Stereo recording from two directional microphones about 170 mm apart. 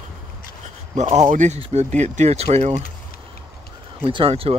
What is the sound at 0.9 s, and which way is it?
Speech, 45° right (ahead or behind).